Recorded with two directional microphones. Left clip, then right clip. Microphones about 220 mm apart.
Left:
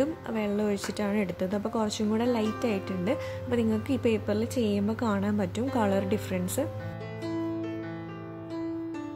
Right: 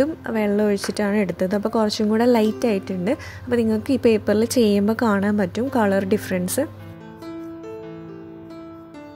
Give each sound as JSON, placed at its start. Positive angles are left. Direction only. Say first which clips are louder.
{"t": 0.0, "sound": "speech", "louder": "right 8 dB", "side_deg": -20}